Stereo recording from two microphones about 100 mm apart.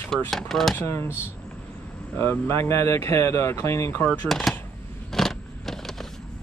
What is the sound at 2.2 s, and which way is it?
Speech, 25° left (ahead or behind).